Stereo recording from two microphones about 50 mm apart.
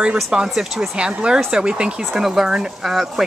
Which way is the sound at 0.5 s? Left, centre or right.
Centre.